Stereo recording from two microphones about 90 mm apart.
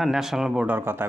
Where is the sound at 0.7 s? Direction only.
25° right (ahead or behind).